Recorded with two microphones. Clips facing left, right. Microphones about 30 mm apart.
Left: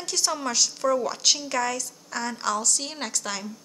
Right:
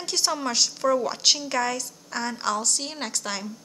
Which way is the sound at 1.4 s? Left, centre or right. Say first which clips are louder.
Right 1 dB; right.